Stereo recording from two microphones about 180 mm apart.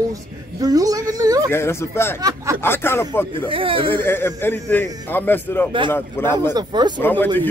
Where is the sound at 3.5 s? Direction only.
30° right (ahead or behind).